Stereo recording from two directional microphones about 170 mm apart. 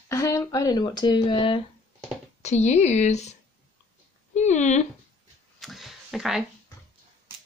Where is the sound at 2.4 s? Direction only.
40° left (ahead or behind).